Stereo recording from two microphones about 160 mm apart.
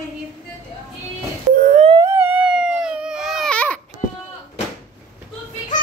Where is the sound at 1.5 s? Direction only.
55° right (ahead or behind).